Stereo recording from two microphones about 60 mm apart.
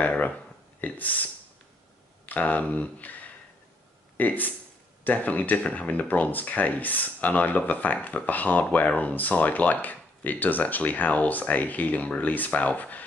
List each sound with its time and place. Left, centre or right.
0.0 s speech: left